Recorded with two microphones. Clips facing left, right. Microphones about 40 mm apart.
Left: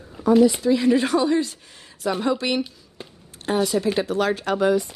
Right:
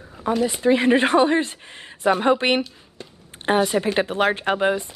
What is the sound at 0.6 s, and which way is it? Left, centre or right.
Speech, right.